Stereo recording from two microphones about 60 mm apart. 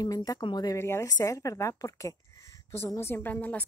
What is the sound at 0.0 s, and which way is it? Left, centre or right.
Speech, left.